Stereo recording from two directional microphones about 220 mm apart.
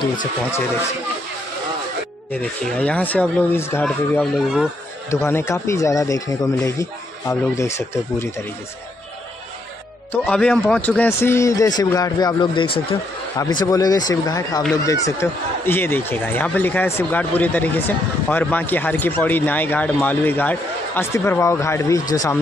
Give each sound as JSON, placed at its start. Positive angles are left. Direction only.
{"t": 2.3, "sound": "speech", "side_deg": 5}
{"t": 10.2, "sound": "speech", "side_deg": 5}